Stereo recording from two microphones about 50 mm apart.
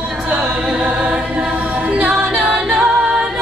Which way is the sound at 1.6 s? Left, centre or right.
Right.